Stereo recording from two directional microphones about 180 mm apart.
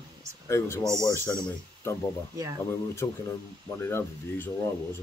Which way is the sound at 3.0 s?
10° left (ahead or behind).